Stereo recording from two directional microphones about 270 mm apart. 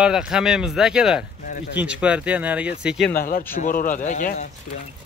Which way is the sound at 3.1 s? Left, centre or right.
Left.